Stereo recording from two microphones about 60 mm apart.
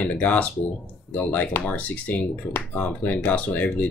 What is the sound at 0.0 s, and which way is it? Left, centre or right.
Speech, left.